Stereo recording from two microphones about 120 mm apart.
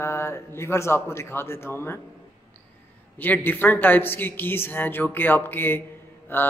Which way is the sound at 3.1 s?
15° left (ahead or behind).